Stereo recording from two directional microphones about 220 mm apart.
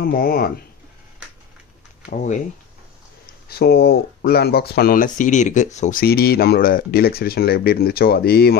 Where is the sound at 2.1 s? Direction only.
35° left (ahead or behind).